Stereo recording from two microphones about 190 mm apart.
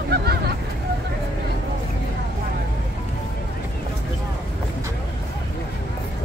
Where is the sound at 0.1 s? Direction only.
60° right (ahead or behind).